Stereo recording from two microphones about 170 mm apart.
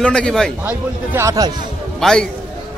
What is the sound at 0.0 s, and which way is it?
Speech, 5° left (ahead or behind).